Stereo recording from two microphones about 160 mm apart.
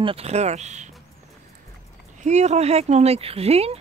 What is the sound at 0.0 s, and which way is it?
Speech, 40° right (ahead or behind).